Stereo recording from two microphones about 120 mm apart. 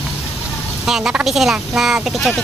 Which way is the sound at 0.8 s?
5° right (ahead or behind).